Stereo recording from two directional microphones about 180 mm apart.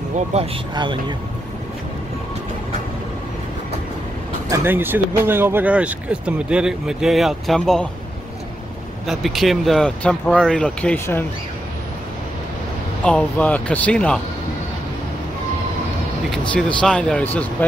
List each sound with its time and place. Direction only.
0.3 s speech: 30° right (ahead or behind)
4.5 s speech: 10° right (ahead or behind)
9.0 s speech: centre (ahead or behind)
13.0 s speech: 5° left (ahead or behind)
16.3 s speech: 5° left (ahead or behind)